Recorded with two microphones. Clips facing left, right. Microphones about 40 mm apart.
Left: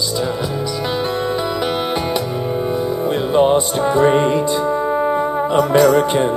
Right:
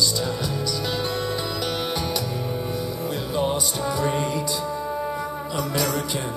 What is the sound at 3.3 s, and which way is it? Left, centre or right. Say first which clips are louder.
Music: left 11 dB; left.